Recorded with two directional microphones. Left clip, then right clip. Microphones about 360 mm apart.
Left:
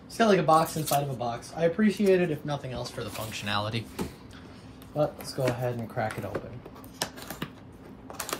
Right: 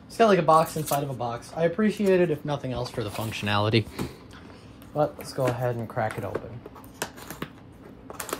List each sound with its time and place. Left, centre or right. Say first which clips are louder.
0.2 s speech: right 3 dB; centre
0.7 s speech: right 1 dB; centre
1.6 s speech: right 1 dB; centre
4.9 s speech: right 2 dB; centre
7.0 s finger snapping: even; centre
8.1 s a sound: right 1 dB; centre